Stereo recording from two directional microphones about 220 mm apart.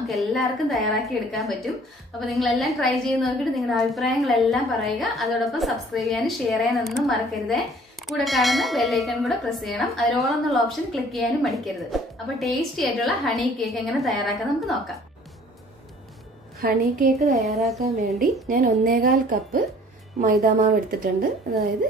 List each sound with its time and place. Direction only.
0.0 s a woman's voice: centre (ahead or behind)
17.1 s a woman's voice: centre (ahead or behind)
18.5 s a woman's voice: 40° right (ahead or behind)